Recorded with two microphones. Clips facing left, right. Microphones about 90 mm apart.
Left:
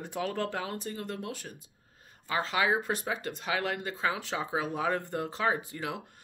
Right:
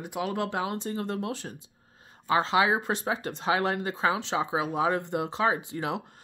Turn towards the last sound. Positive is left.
turn(degrees=-25)  # may be behind; listen again after turning